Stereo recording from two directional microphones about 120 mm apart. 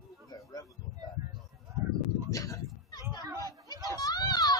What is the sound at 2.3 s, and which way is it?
Fowl, 30° left (ahead or behind).